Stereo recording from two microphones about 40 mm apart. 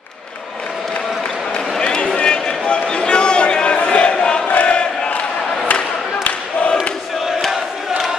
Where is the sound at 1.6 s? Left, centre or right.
Centre.